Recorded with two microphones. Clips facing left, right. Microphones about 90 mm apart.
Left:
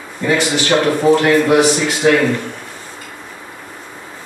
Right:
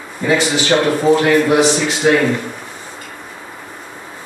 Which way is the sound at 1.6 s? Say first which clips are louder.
Even; 25° right (ahead or behind).